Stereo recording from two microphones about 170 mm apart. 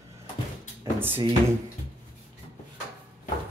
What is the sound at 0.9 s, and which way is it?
Speech, 10° right (ahead or behind).